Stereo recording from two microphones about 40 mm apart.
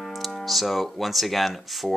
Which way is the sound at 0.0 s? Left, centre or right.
Centre.